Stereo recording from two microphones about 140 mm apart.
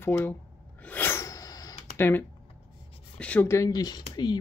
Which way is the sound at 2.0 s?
15° left (ahead or behind).